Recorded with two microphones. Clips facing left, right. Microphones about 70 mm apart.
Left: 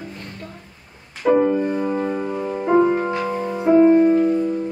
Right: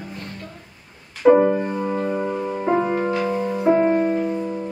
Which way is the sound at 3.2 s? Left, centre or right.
Centre.